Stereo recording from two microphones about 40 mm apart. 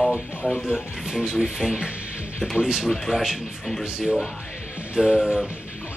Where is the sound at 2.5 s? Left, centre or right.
Centre.